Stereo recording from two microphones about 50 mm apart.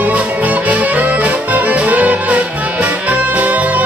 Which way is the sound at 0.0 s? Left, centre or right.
Right.